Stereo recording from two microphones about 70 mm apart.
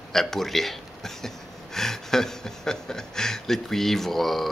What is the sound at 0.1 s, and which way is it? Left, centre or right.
Speech, centre.